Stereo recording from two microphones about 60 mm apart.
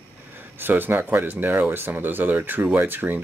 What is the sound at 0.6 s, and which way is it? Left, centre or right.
Speech, right.